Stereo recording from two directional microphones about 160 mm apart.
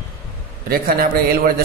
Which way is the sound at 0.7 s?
70° right (ahead or behind).